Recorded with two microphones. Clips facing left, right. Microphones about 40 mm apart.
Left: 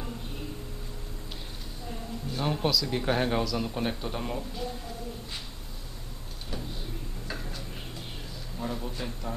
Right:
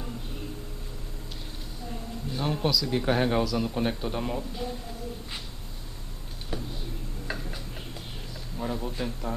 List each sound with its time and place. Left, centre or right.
1.9 s speech: centre
7.3 s tick-tock: right
8.5 s speech: centre